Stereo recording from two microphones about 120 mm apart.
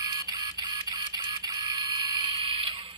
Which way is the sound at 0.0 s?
35° right (ahead or behind).